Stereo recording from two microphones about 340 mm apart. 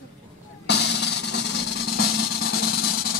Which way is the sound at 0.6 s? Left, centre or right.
Left.